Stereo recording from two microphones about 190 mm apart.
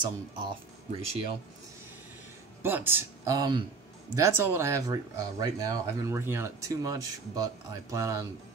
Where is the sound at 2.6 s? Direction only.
10° right (ahead or behind).